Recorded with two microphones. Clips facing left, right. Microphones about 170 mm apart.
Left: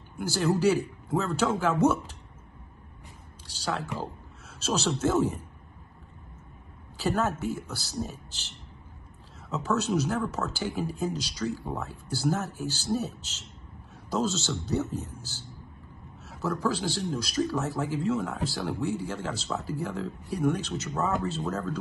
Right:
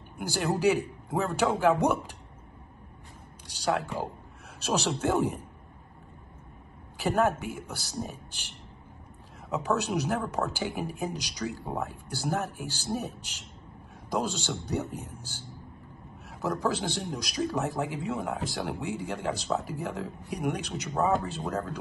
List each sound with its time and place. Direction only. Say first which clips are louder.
0.2 s speech: left 2 dB; 15° right (ahead or behind)
3.4 s speech: right 3 dB; 15° right (ahead or behind)
7.0 s speech: right 2 dB; 15° right (ahead or behind)
20.9 s speech: right 3 dB; centre (ahead or behind)
21.3 s speech: left 1 dB; 15° right (ahead or behind)